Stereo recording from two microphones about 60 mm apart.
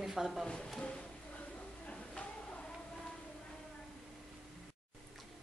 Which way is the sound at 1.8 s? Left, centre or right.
Centre.